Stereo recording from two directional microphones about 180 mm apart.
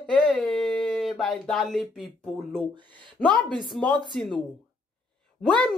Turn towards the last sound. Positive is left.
turn(degrees=5)  # may be behind; listen again after turning